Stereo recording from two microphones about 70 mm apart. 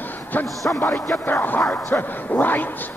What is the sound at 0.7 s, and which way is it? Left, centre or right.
Speech, left.